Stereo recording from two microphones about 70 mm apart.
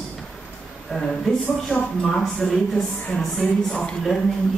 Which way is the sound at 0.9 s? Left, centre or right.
Centre.